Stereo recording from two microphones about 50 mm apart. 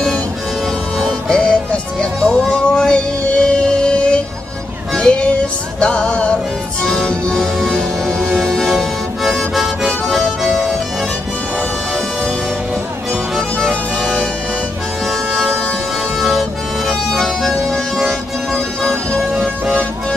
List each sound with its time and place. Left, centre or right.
1.3 s music: centre
7.3 s music: centre
15.0 s music: centre
18.8 s music: centre